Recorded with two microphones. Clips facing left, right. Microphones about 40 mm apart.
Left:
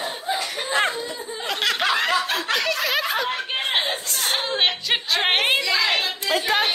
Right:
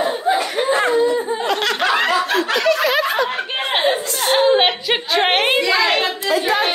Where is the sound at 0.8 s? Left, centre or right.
Right.